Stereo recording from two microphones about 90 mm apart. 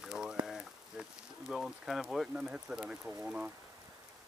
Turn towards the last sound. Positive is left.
turn(degrees=-10)  # may be behind; listen again after turning